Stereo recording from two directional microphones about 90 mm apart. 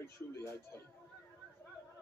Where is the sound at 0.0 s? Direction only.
30° left (ahead or behind).